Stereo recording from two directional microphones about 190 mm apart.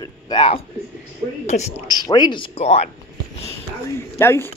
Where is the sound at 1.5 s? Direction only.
45° left (ahead or behind).